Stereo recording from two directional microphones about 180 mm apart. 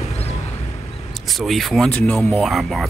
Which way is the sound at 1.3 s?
Centre (ahead or behind).